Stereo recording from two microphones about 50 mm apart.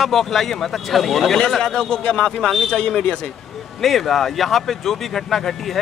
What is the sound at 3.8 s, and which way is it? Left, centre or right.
Speech, centre.